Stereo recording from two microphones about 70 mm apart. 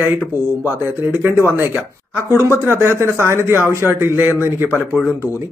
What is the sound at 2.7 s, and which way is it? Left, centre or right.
Speech, right.